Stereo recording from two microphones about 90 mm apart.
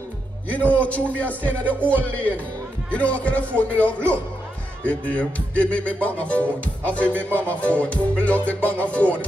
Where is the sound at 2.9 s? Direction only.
15° left (ahead or behind).